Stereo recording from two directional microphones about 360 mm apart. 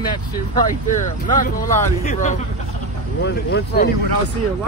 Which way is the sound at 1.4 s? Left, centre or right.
Left.